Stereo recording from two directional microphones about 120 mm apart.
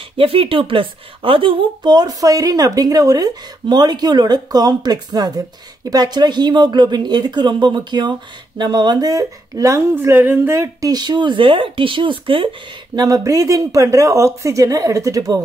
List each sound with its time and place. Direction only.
0.2 s speech: 50° right (ahead or behind)
12.9 s speech: 30° right (ahead or behind)